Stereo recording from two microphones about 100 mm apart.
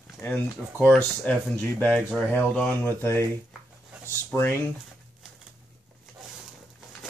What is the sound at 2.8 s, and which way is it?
Speech, 25° left (ahead or behind).